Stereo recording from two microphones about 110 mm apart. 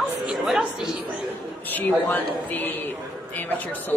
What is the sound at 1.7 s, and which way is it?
A man's voice, 15° left (ahead or behind).